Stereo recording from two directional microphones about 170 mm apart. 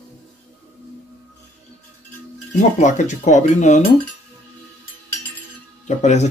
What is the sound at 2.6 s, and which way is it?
Speech, 45° left (ahead or behind).